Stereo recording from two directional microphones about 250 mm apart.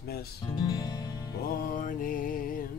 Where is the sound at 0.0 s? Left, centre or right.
Left.